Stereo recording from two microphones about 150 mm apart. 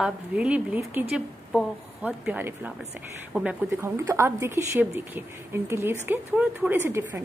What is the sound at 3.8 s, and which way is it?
Speech, 15° right (ahead or behind).